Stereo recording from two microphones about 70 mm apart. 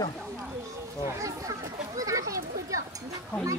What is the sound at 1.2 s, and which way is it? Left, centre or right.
Speech, right.